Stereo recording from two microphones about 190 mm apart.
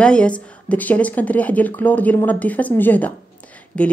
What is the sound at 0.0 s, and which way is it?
A woman's voice, 5° left (ahead or behind).